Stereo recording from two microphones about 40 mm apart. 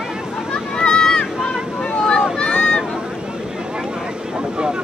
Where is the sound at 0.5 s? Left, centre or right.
Left.